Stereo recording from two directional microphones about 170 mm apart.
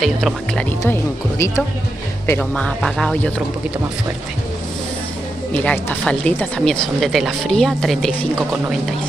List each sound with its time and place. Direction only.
0.0 s speech: 5° left (ahead or behind)
2.2 s speech: 10° left (ahead or behind)
5.5 s speech: 10° left (ahead or behind)